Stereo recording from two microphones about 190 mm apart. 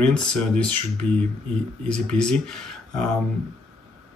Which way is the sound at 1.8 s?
5° left (ahead or behind).